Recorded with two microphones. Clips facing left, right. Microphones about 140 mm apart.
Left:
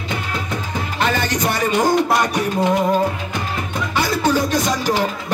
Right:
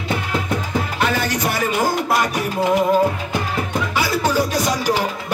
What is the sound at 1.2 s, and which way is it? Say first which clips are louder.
Music: left 1 dB; 5° right (ahead or behind).